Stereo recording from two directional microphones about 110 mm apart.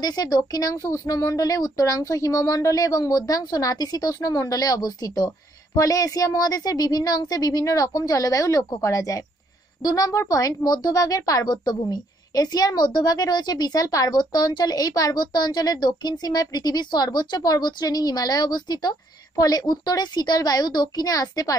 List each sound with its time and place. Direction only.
0.0 s speech: 35° left (ahead or behind)